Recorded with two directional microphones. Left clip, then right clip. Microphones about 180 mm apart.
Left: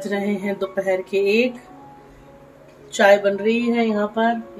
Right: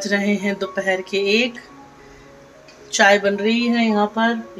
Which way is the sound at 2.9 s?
5° right (ahead or behind).